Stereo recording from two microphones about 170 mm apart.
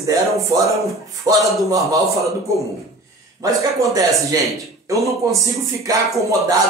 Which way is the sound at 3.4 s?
20° right (ahead or behind).